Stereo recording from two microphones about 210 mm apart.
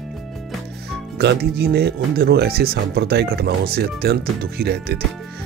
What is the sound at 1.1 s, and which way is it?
Speech, 50° right (ahead or behind).